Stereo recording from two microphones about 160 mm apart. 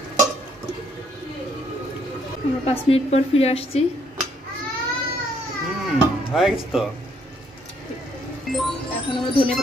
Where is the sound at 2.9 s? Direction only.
40° left (ahead or behind).